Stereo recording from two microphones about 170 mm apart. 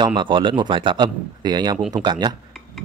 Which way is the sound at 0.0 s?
30° right (ahead or behind).